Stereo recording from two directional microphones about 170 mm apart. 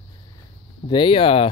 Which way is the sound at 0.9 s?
30° left (ahead or behind).